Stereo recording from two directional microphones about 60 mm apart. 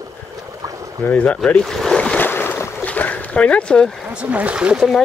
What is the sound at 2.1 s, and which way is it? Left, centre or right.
Boat, left.